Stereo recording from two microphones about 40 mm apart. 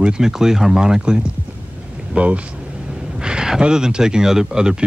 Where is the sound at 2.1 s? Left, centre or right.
Right.